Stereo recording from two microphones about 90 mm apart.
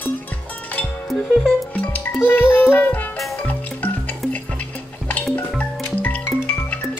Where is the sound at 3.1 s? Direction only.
5° left (ahead or behind).